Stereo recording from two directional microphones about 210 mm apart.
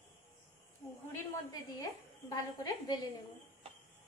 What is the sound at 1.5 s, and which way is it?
A woman's voice, 20° left (ahead or behind).